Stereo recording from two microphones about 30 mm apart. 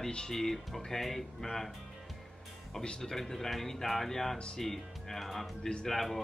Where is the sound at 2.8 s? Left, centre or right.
Left.